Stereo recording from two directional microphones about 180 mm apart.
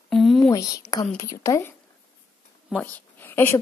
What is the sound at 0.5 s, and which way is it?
A woman's voice, 20° left (ahead or behind).